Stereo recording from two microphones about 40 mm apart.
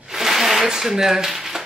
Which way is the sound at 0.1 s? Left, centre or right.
Centre.